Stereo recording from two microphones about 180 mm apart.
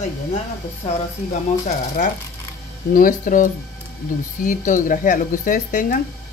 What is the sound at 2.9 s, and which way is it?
Speech, 50° left (ahead or behind).